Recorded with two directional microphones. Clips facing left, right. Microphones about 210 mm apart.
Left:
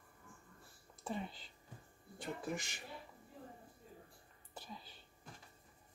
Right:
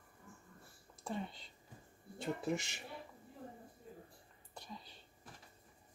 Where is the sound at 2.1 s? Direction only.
25° right (ahead or behind).